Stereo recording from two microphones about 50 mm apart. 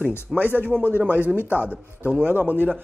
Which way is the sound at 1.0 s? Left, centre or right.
Right.